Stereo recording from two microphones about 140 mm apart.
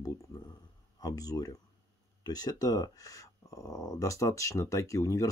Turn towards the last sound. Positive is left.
turn(degrees=20)  # may be behind; listen again after turning